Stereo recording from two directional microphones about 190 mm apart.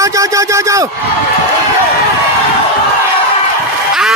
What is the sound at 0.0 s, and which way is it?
Speech, 15° right (ahead or behind).